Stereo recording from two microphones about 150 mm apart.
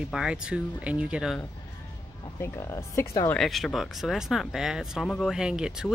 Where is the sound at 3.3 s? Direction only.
Centre (ahead or behind).